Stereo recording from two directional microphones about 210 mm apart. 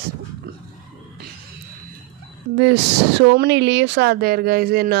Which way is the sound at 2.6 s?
55° right (ahead or behind).